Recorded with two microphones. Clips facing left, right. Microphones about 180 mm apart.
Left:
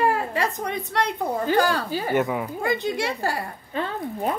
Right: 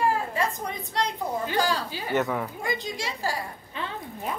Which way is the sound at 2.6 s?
60° left (ahead or behind).